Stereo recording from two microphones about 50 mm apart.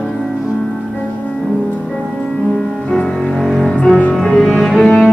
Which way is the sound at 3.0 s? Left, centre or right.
Centre.